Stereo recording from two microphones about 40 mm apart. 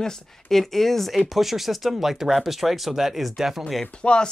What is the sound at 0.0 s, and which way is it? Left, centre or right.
Speech, centre.